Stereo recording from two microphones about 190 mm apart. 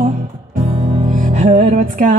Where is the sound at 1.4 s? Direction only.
40° right (ahead or behind).